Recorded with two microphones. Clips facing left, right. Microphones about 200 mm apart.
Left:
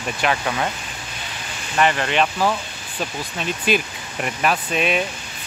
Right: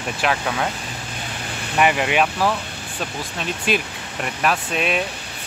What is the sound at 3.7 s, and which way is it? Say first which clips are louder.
Speech: left 2 dB; centre (ahead or behind).